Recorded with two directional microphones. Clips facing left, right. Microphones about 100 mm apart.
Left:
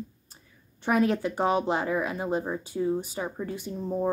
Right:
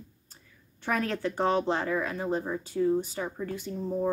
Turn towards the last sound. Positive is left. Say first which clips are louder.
# left 1 dB
turn(degrees=15)  # may be behind; listen again after turning